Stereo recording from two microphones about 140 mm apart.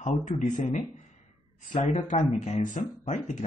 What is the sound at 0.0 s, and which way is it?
Speech, 65° left (ahead or behind).